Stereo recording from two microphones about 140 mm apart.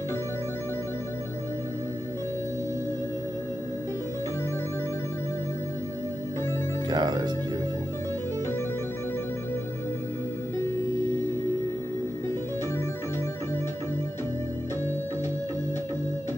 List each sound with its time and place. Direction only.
6.9 s music: 30° right (ahead or behind)